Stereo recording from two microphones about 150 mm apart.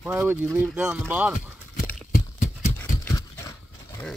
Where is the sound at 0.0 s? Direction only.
10° right (ahead or behind).